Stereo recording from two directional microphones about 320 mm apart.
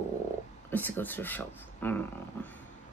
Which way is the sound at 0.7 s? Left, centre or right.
Centre.